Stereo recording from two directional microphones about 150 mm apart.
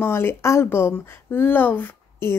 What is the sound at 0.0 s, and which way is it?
A child's voice, 15° left (ahead or behind).